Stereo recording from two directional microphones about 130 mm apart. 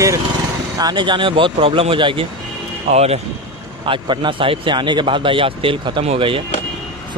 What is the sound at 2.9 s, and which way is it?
Speech, 55° right (ahead or behind).